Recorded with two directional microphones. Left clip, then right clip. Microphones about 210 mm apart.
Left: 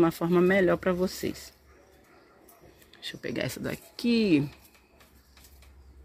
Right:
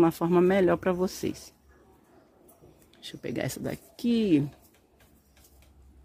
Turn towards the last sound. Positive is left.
turn(degrees=-5)  # may be behind; listen again after turning